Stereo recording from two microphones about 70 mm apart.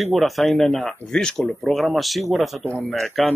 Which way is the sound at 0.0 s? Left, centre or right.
Centre.